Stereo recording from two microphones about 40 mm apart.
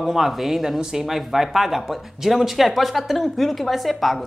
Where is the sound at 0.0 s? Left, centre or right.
Centre.